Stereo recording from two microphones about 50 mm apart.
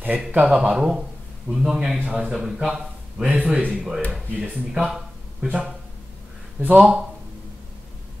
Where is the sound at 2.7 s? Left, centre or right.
Right.